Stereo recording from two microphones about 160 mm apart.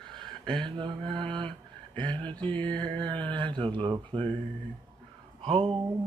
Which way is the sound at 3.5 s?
30° right (ahead or behind).